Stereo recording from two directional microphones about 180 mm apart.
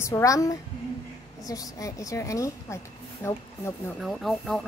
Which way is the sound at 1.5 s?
20° left (ahead or behind).